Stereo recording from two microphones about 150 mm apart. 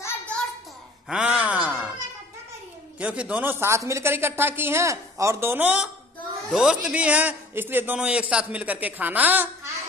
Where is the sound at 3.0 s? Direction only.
10° right (ahead or behind).